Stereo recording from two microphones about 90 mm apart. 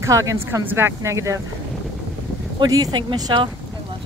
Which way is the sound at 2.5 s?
45° right (ahead or behind).